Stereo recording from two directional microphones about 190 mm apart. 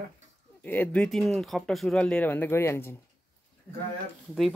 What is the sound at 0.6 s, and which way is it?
Speech, 10° left (ahead or behind).